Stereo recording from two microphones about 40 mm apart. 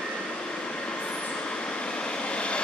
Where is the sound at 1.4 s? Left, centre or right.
Left.